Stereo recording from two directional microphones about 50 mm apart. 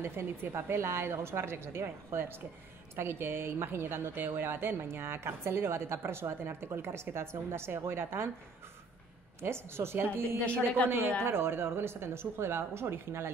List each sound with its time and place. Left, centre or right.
0.0 s a woman's voice: right
9.4 s speech: right
10.4 s speech: left
10.9 s a woman's voice: right